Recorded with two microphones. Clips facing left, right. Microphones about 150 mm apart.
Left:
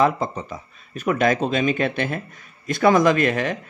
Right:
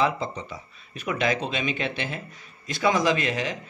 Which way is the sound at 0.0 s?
50° left (ahead or behind).